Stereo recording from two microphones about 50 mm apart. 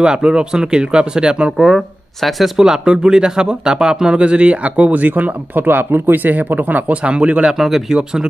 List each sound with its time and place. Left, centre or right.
0.0 s speech: centre
2.2 s speech: centre; by 7.0 s right
7.0 s speech: right
7.5 s speech: centre